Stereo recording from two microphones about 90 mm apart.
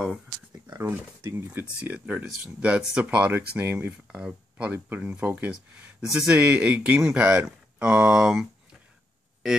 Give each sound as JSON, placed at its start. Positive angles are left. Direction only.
{"t": 0.7, "sound": "speech", "side_deg": -25}